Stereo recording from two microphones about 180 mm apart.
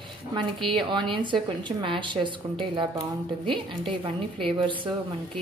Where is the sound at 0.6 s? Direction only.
25° right (ahead or behind).